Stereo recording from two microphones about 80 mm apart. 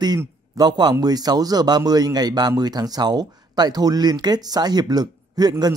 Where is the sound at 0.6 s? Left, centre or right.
Right.